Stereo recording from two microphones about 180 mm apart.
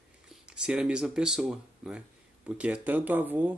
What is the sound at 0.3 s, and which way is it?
Speech, 5° right (ahead or behind).